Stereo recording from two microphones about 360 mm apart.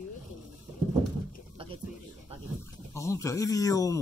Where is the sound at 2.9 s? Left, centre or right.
Centre.